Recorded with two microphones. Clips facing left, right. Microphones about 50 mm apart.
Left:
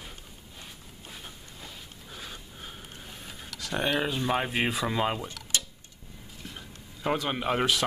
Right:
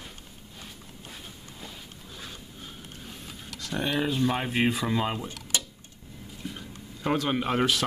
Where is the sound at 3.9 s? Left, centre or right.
Centre.